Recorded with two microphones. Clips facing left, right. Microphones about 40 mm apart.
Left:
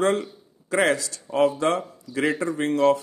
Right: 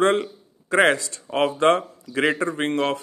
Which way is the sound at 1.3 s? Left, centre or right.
Right.